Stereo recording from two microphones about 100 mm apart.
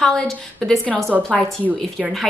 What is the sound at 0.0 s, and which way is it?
A woman's voice, 5° left (ahead or behind).